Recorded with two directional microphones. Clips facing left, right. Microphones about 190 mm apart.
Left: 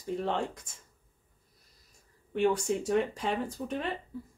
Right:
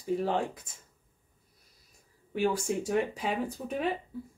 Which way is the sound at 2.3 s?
5° right (ahead or behind).